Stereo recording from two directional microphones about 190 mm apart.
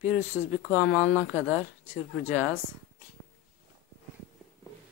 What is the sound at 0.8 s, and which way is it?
Speech, 5° right (ahead or behind).